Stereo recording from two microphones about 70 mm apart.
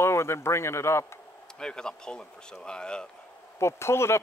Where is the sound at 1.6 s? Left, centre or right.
Centre.